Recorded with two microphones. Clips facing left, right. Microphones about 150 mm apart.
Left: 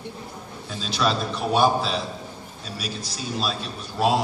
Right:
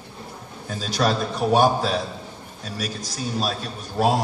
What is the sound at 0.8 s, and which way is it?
A man's voice, 45° right (ahead or behind).